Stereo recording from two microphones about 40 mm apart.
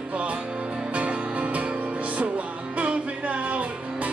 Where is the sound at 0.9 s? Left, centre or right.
Right.